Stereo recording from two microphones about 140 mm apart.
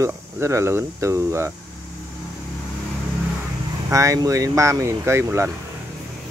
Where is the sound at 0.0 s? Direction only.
20° right (ahead or behind).